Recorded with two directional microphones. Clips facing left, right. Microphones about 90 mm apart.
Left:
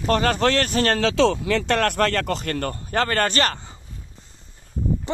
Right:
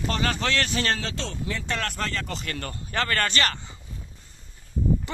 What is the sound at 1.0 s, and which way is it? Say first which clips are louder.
Speech: left 13 dB; 90° left.